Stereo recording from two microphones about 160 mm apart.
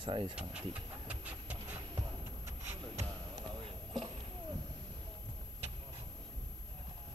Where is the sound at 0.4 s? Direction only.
5° right (ahead or behind).